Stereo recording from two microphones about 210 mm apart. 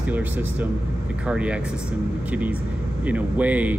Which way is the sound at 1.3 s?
5° right (ahead or behind).